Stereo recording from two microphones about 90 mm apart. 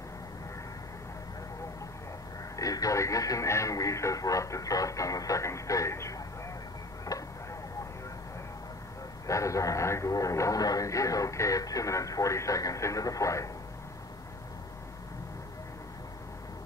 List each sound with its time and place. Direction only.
2.5 s speech: 40° left (ahead or behind)
7.1 s tick-tock: 40° left (ahead or behind)
9.3 s speech: 35° left (ahead or behind)